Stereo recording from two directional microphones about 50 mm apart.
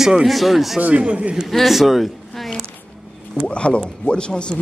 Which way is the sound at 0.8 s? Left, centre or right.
Right.